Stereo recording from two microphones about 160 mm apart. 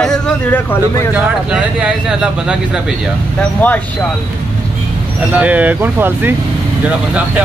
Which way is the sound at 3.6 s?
10° left (ahead or behind).